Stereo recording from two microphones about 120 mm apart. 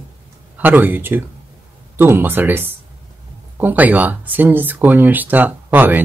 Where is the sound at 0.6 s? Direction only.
15° right (ahead or behind).